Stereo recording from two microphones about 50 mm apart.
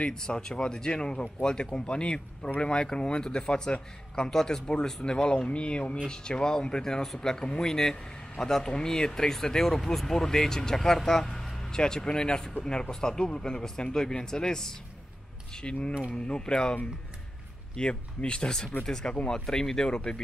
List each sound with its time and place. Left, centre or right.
0.0 s speech: centre
17.7 s speech: centre